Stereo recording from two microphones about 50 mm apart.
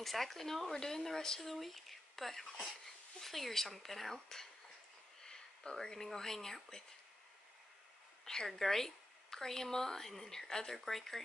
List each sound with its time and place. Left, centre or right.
0.0 s speech: centre
8.3 s a woman's voice: centre